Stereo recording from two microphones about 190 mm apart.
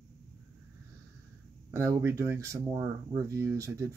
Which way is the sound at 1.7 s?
15° right (ahead or behind).